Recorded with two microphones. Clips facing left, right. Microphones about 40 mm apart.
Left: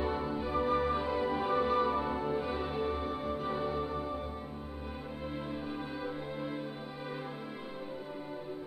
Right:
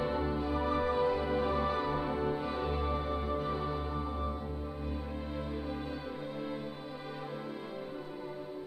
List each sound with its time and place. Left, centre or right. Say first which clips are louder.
0.0 s music: right 1 dB; centre
0.4 s music: left 1 dB; centre